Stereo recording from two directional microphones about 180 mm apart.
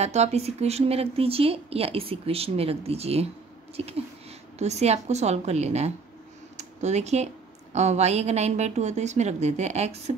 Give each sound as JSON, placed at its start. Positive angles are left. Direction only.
{"t": 0.0, "sound": "a woman's voice", "side_deg": -35}
{"t": 6.5, "sound": "computer keyboard", "side_deg": -40}
{"t": 7.7, "sound": "a woman's voice", "side_deg": -40}